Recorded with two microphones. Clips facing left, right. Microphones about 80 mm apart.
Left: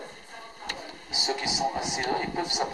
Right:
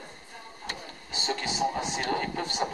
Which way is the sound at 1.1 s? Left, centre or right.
Centre.